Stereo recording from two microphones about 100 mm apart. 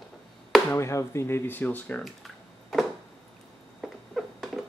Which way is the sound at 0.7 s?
30° left (ahead or behind).